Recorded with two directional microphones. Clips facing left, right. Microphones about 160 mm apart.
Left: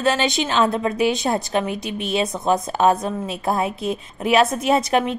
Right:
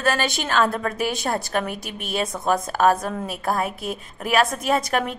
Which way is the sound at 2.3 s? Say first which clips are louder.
Left 2 dB; 20° left (ahead or behind).